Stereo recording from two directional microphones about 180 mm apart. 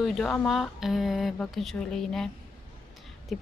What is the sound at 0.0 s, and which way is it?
Speech, centre (ahead or behind).